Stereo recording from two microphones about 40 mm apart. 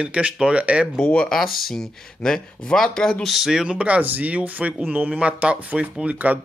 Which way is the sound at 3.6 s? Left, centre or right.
Right.